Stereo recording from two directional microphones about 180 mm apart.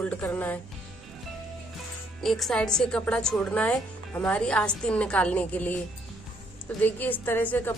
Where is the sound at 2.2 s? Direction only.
Centre (ahead or behind).